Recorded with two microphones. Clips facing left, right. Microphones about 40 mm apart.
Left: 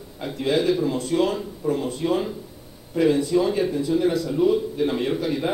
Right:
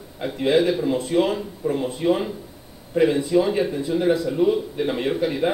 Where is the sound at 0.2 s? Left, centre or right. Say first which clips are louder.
Right 3 dB; centre.